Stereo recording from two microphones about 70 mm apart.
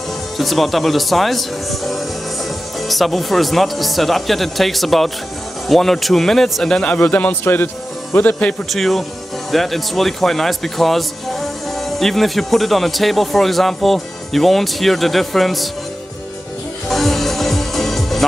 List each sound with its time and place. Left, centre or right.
0.4 s a man's voice: centre; by 8.5 s left
8.6 s speech: centre
16.9 s music: centre